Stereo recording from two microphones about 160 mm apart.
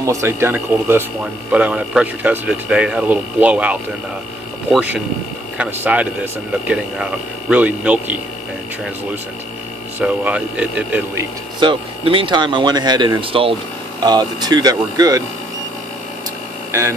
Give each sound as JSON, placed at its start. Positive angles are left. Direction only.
{"t": 0.0, "sound": "speech", "side_deg": -20}
{"t": 4.7, "sound": "speech", "side_deg": -5}
{"t": 9.9, "sound": "speech", "side_deg": -10}
{"t": 11.6, "sound": "speech", "side_deg": -30}